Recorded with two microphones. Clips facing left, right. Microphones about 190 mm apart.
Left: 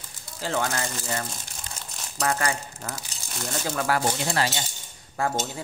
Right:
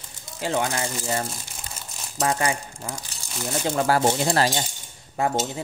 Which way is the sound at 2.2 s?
20° right (ahead or behind).